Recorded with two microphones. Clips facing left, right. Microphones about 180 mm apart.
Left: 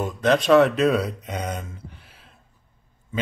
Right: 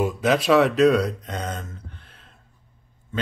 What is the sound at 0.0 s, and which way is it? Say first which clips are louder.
Speech: even; 5° right (ahead or behind).